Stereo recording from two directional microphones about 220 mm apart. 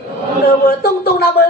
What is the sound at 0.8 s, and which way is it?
Speech, 45° left (ahead or behind).